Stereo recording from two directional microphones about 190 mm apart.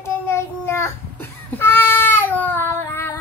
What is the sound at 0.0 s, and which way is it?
Child singing, 15° left (ahead or behind).